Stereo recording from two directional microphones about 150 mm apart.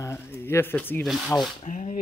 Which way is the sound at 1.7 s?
55° left (ahead or behind).